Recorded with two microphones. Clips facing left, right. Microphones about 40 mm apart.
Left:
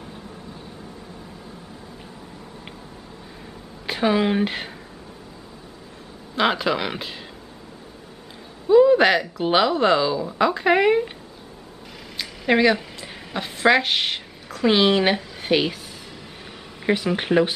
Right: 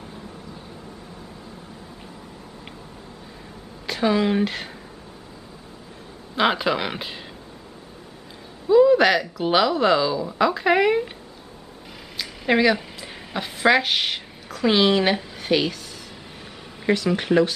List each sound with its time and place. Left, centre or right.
3.8 s speech: centre
6.3 s speech: centre
8.6 s speech: centre
12.2 s a woman's voice: centre
16.8 s speech: centre